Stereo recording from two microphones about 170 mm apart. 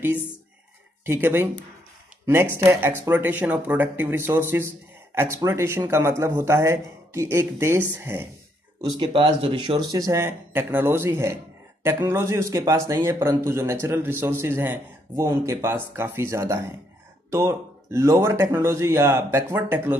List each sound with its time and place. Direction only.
1.0 s speech: 15° right (ahead or behind)
8.8 s speech: 25° right (ahead or behind)
9.8 s speech: 20° right (ahead or behind)